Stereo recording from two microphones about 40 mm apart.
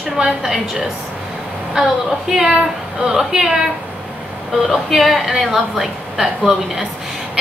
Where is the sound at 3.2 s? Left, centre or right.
Centre.